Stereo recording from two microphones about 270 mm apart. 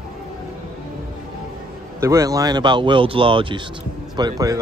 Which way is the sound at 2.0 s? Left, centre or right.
Centre.